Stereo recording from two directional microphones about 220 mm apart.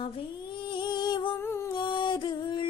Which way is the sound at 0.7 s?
20° left (ahead or behind).